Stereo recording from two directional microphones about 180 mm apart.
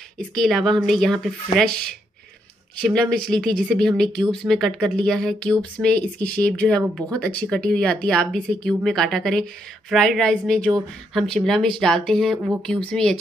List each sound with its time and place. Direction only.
0.2 s speech: 5° left (ahead or behind)